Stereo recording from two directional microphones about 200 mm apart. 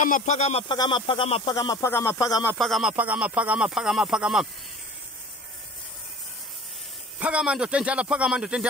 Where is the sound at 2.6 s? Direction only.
Centre (ahead or behind).